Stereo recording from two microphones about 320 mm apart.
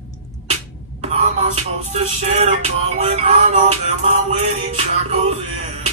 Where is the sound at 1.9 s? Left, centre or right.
Centre.